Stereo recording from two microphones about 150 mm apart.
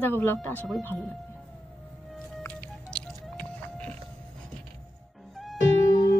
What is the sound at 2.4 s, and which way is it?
Music, 10° left (ahead or behind).